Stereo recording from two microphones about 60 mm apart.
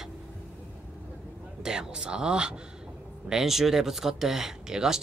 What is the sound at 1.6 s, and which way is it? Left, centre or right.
A man's voice, centre.